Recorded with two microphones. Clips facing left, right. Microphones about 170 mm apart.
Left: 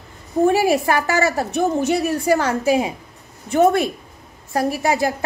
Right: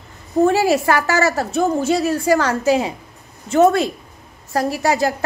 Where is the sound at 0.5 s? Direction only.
15° left (ahead or behind).